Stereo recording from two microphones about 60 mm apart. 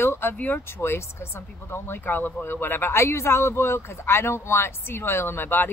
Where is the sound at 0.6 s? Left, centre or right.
Left.